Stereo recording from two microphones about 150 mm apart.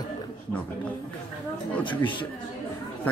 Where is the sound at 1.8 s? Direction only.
35° left (ahead or behind).